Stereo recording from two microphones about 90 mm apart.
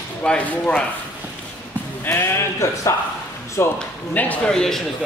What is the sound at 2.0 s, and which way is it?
Speech, 25° left (ahead or behind).